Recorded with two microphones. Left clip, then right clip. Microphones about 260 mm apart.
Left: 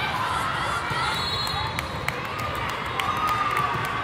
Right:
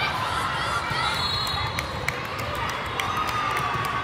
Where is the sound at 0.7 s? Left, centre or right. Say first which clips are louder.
Even; centre.